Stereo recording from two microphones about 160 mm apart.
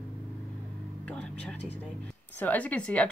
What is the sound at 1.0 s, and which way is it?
A woman's voice, 5° left (ahead or behind).